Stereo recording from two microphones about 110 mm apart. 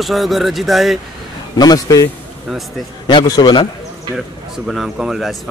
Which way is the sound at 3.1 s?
40° left (ahead or behind).